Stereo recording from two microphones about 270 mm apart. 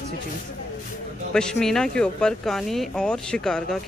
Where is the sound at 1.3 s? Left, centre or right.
Centre.